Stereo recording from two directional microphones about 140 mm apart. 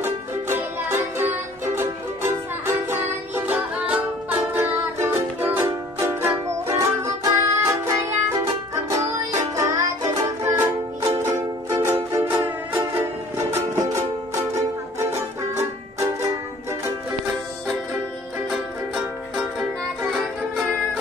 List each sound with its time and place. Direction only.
0.0 s music: 15° right (ahead or behind)
18.5 s music: centre (ahead or behind)